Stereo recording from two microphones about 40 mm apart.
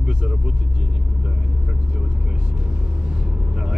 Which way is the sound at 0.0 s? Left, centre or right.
Right.